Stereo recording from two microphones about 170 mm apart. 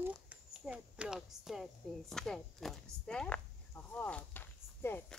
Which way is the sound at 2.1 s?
5° left (ahead or behind).